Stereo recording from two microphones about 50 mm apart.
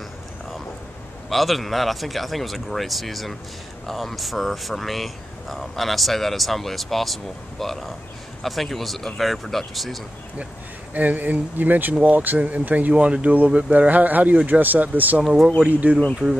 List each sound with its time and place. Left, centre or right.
1.3 s speech: centre
10.9 s speech: right